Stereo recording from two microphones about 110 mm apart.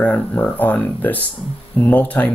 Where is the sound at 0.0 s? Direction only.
15° left (ahead or behind).